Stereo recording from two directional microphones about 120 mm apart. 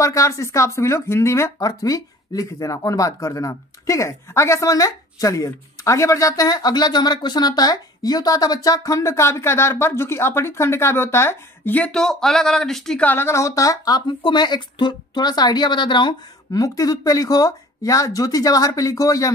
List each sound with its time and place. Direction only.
0.0 s speech: 25° left (ahead or behind)